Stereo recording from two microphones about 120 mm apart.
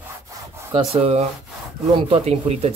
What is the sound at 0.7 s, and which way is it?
Speech, 55° right (ahead or behind).